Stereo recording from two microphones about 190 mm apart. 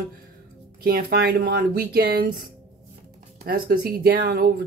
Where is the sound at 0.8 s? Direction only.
55° right (ahead or behind).